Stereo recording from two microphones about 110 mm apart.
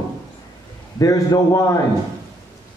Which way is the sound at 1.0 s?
30° left (ahead or behind).